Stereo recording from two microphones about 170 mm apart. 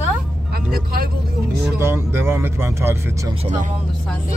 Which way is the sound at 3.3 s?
30° right (ahead or behind).